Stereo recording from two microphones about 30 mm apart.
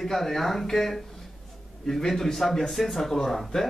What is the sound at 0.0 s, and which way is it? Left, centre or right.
Speech, centre.